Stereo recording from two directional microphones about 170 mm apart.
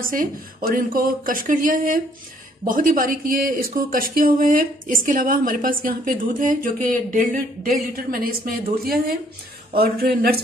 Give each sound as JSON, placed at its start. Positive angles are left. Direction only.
{"t": 0.1, "sound": "speech", "side_deg": -55}